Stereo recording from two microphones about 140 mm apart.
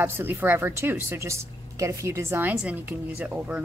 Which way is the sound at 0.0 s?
15° right (ahead or behind).